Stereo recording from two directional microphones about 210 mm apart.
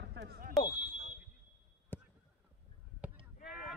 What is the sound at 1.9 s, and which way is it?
Basketball bounce, 10° left (ahead or behind).